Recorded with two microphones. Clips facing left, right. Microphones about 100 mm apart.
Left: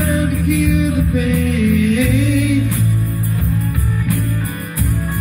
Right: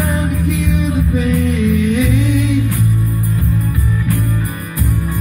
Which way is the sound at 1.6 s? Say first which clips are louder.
Left 2 dB; 20° right (ahead or behind).